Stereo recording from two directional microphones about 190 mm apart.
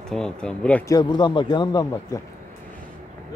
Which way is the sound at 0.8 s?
20° left (ahead or behind).